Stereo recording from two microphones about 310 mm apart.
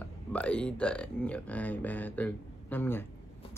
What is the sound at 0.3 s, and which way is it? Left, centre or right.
Speech, centre.